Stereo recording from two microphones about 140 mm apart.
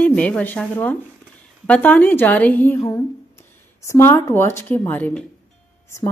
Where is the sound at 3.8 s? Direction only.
20° left (ahead or behind).